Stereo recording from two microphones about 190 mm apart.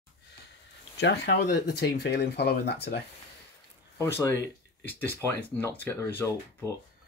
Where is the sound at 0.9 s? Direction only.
65° left (ahead or behind).